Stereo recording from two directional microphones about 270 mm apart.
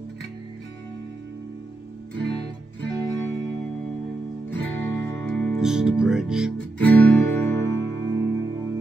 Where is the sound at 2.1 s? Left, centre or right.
Right.